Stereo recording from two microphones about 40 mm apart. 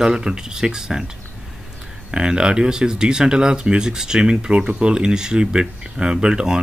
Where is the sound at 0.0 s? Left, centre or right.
Centre.